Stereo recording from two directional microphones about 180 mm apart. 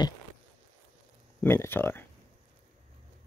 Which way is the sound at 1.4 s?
10° left (ahead or behind).